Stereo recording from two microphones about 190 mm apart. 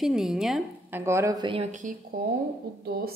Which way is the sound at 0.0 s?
Centre (ahead or behind).